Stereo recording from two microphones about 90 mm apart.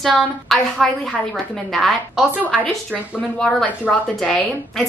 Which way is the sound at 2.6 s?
15° left (ahead or behind).